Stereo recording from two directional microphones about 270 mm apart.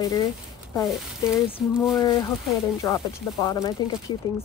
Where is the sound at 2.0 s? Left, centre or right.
Centre.